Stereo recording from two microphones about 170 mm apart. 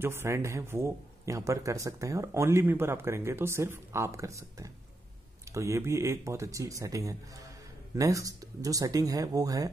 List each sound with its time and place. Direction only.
0.0 s speech: 15° right (ahead or behind)